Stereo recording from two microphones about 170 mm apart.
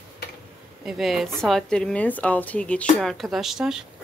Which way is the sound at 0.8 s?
Centre (ahead or behind).